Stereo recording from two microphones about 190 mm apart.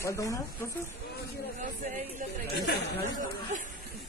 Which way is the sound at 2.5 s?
55° left (ahead or behind).